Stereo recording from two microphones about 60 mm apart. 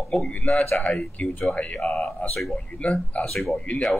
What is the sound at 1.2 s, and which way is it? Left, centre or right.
Speech, left.